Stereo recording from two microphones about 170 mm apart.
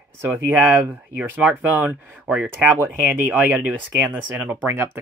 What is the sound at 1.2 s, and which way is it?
Speech, 10° right (ahead or behind).